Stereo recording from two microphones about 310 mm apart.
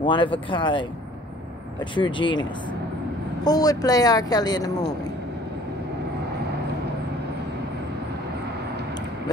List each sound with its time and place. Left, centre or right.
0.0 s speech: centre
2.0 s speech: centre
3.4 s speech: centre